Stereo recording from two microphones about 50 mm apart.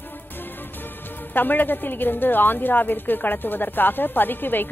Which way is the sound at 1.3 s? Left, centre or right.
Left.